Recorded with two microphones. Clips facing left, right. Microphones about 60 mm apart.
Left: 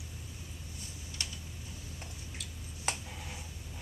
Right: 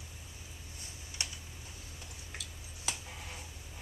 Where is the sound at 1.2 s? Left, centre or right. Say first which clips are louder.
Right 1 dB; centre.